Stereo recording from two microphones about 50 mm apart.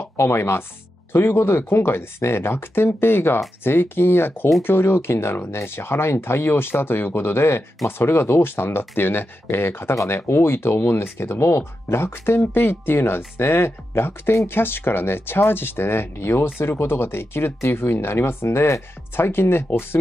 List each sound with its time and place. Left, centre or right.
0.2 s speech: left